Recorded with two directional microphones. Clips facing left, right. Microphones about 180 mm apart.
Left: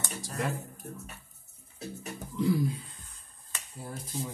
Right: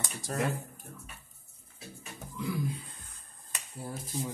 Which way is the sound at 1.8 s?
40° left (ahead or behind).